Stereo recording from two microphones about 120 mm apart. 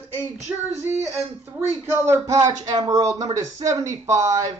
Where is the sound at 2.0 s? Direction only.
25° right (ahead or behind).